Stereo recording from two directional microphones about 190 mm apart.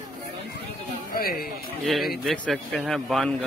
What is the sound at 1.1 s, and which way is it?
Speech, 50° left (ahead or behind).